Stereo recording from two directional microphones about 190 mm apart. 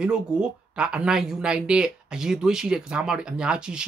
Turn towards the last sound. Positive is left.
turn(degrees=-5)  # may be behind; listen again after turning